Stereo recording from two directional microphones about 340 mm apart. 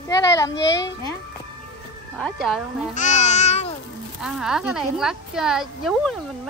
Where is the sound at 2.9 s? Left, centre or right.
Left.